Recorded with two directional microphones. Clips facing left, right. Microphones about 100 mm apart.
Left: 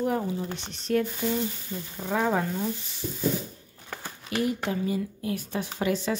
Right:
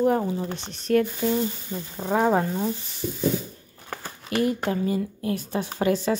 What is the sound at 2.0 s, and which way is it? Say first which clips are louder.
Speech: right 5 dB; 35° right (ahead or behind).